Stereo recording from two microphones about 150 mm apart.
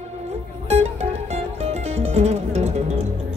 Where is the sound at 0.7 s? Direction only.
45° right (ahead or behind).